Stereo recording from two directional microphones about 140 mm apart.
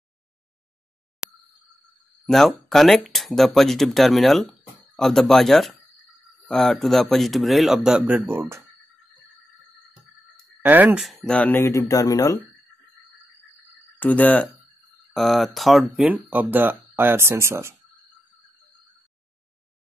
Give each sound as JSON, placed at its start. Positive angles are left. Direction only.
{"t": 1.2, "sound": "a sound", "side_deg": -5}
{"t": 2.2, "sound": "speech", "side_deg": 0}
{"t": 8.3, "sound": "speech", "side_deg": -20}
{"t": 10.6, "sound": "speech", "side_deg": -10}
{"t": 11.0, "sound": "speech", "side_deg": 0}
{"t": 13.9, "sound": "speech", "side_deg": 10}